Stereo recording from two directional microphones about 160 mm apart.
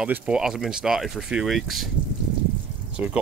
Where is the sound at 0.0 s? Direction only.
5° right (ahead or behind).